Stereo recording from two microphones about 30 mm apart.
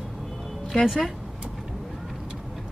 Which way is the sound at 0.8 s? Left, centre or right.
Centre.